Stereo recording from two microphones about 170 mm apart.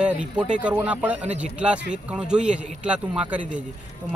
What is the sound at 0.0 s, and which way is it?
Speech, 5° right (ahead or behind).